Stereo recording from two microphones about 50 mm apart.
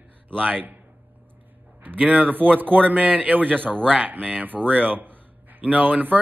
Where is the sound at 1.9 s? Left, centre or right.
Right.